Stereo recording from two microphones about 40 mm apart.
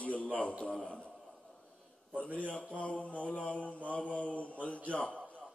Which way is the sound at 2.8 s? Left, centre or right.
Left.